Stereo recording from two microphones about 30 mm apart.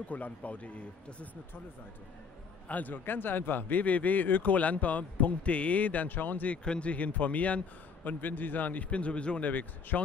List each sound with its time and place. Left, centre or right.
0.1 s a man's voice: left
2.7 s a man's voice: left
6.6 s speech: left
6.9 s a man's voice: left
8.0 s a man's voice: left
8.9 s speech: left
9.4 s a man's voice: left